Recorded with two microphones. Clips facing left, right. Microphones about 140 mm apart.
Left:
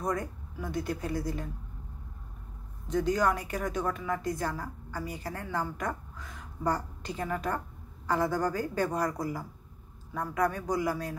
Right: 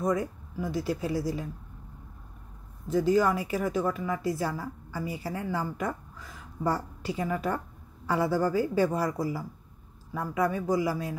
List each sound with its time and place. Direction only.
0.0 s speech: 5° right (ahead or behind)
2.9 s a woman's voice: 5° right (ahead or behind)